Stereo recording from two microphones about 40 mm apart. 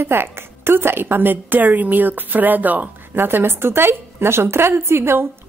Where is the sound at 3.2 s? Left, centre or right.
Right.